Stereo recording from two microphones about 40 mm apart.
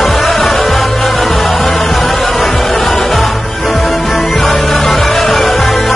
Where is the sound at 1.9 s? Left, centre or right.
Centre.